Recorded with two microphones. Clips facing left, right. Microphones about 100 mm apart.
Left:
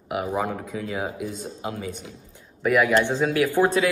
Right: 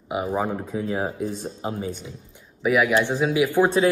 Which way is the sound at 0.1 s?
20° right (ahead or behind).